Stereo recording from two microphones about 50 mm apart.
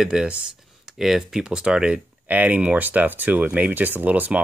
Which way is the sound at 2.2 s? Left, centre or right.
Right.